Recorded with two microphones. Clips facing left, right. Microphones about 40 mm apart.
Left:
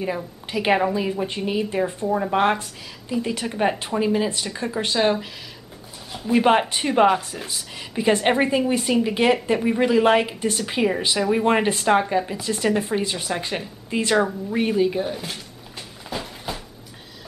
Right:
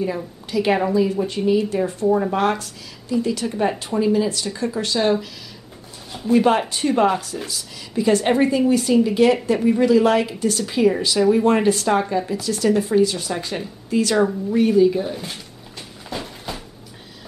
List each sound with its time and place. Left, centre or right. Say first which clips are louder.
0.5 s speech: right 1 dB; left
2.0 s speech: right 5 dB; centre
2.3 s speech: even; left
6.2 s a woman's voice: right 1 dB; left
15.1 s speech: even; centre
16.1 s a sound: even; centre